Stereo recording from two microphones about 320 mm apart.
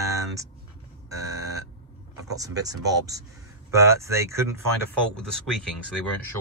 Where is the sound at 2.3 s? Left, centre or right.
Centre.